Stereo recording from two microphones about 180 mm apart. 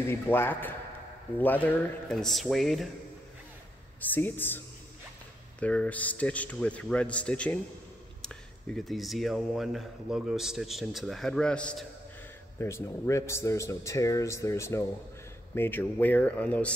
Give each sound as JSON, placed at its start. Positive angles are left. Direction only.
{"t": 0.1, "sound": "a man's voice", "side_deg": 10}
{"t": 4.0, "sound": "a man's voice", "side_deg": 10}